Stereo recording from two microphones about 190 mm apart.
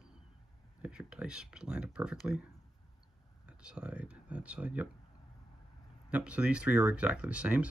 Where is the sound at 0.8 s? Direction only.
5° right (ahead or behind).